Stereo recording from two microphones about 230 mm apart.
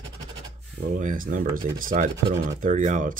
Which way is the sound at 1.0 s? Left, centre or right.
Right.